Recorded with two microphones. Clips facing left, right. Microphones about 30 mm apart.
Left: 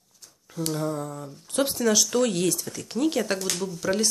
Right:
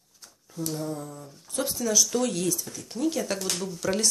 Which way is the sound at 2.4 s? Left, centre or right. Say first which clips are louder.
Left 3 dB; left.